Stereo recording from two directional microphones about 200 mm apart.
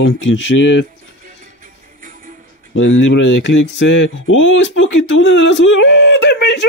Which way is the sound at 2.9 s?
75° left (ahead or behind).